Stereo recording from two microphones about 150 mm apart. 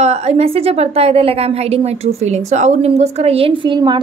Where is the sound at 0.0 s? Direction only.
45° right (ahead or behind).